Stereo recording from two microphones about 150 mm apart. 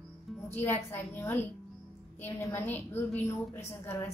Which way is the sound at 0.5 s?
15° left (ahead or behind).